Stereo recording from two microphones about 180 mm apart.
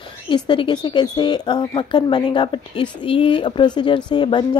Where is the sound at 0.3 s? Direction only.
30° left (ahead or behind).